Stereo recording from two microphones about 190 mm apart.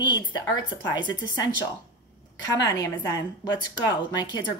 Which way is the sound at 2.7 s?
20° left (ahead or behind).